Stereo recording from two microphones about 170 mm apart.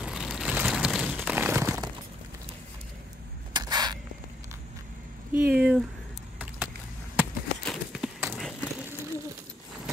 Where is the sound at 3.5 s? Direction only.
25° right (ahead or behind).